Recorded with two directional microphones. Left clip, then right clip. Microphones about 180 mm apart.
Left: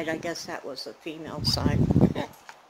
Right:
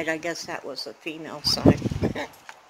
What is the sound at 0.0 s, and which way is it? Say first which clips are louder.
Speech: right 3 dB; 10° right (ahead or behind).